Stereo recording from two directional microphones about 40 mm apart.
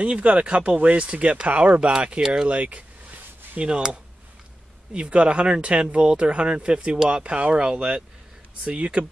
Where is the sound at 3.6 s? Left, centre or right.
Right.